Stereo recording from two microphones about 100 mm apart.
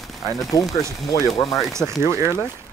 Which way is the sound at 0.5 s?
35° left (ahead or behind).